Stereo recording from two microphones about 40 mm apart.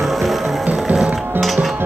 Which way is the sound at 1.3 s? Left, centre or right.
Centre.